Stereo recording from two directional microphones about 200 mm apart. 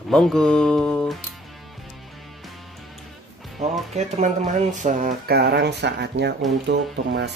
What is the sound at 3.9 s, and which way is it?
Speech, 35° right (ahead or behind).